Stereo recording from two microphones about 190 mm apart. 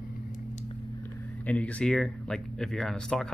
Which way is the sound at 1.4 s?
5° left (ahead or behind).